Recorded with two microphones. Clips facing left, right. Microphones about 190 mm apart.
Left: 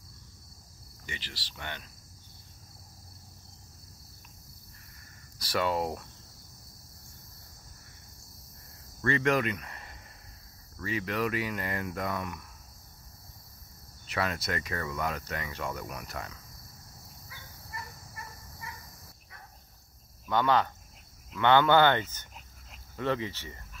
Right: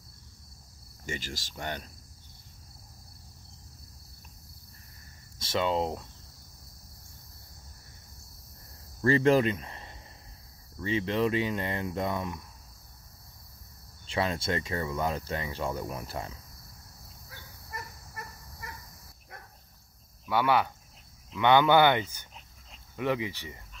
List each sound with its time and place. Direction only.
1.0 s speech: 45° right (ahead or behind)
5.4 s speech: 25° right (ahead or behind)
9.0 s speech: 30° right (ahead or behind)
14.0 s speech: 25° right (ahead or behind)
17.3 s a sound: 55° right (ahead or behind)
20.2 s speech: 10° right (ahead or behind)